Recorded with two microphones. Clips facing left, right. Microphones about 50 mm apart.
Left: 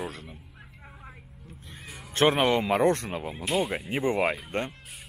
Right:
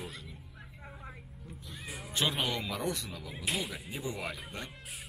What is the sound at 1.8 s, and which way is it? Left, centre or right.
Music, centre.